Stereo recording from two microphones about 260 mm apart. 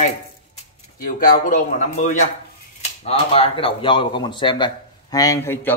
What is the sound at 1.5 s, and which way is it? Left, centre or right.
A man's voice, left.